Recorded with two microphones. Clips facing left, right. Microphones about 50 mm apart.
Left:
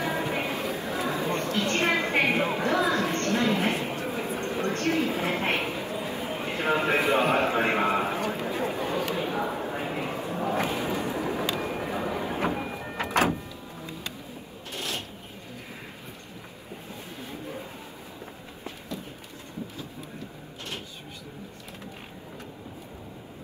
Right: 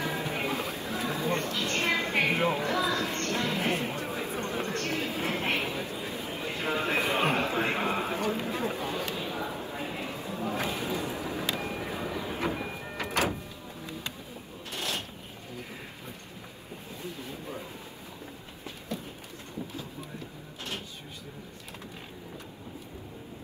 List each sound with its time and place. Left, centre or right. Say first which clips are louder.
0.0 s chatter: left 3 dB; left
12.9 s vehicle: left 5 dB; left
14.8 s a sound: even; left